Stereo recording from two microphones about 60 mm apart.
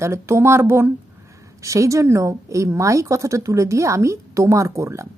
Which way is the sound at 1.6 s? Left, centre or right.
Right.